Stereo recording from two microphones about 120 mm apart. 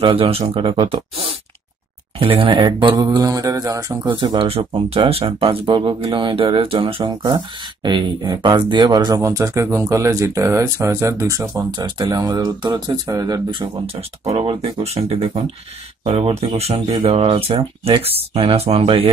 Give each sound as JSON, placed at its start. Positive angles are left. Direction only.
{"t": 0.0, "sound": "speech", "side_deg": -50}
{"t": 4.0, "sound": "speech", "side_deg": -40}
{"t": 11.5, "sound": "speech", "side_deg": -35}
{"t": 14.2, "sound": "speech", "side_deg": -50}